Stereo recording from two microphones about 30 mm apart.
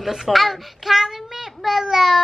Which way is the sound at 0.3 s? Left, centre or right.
Centre.